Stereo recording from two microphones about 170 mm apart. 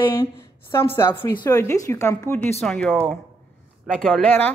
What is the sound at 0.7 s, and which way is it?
A woman's voice, 25° left (ahead or behind).